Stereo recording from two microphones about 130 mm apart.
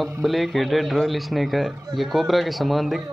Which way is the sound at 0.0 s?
Centre (ahead or behind).